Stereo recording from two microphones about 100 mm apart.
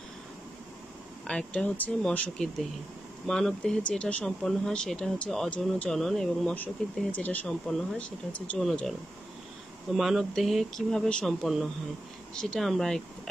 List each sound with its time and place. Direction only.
1.2 s speech: 10° left (ahead or behind)
7.6 s speech: centre (ahead or behind)
8.3 s speech: 15° left (ahead or behind)
9.9 s speech: centre (ahead or behind)